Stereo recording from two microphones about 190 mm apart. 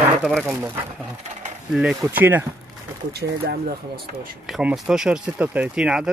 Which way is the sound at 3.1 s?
55° right (ahead or behind).